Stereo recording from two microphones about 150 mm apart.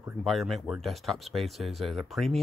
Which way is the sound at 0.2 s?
Centre (ahead or behind).